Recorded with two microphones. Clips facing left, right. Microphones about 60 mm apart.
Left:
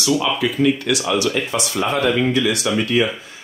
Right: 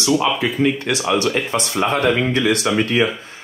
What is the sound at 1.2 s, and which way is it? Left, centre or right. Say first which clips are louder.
Speech: right 1 dB; right.